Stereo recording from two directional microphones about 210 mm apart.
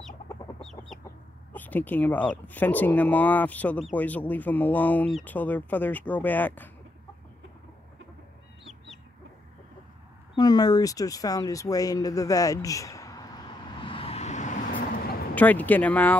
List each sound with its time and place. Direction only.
0.6 s chicken: centre (ahead or behind)
1.5 s speech: 10° left (ahead or behind)
10.3 s a sound: 20° left (ahead or behind); by 15.1 s 40° left (ahead or behind)
15.3 s speech: 5° left (ahead or behind)